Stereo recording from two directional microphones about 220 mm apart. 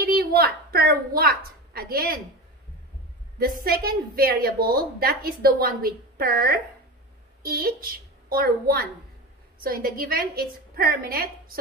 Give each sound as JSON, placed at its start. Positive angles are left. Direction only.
{"t": 0.2, "sound": "a woman's voice", "side_deg": -45}
{"t": 3.3, "sound": "a woman's voice", "side_deg": -40}